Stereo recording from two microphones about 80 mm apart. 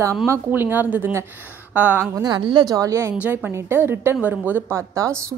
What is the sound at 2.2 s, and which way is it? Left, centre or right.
Speech, right.